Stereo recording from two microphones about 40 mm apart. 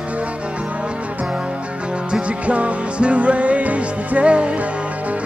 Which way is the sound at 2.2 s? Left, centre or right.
Right.